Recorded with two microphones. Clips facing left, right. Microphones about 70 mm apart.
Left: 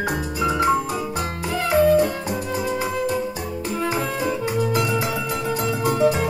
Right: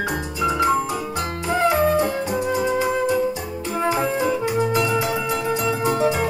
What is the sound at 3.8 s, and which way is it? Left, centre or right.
Music, right.